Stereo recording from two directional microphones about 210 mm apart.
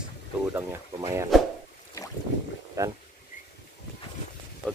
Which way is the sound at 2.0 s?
15° left (ahead or behind).